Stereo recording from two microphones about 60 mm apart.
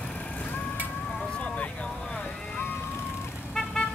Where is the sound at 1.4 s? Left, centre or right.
Left.